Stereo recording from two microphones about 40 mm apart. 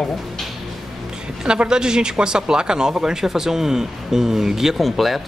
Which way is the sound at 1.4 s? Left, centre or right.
Right.